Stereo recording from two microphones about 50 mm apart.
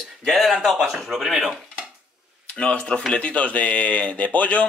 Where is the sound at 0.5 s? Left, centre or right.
Centre.